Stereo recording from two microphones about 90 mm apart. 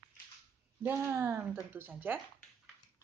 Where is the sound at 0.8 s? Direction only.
25° right (ahead or behind).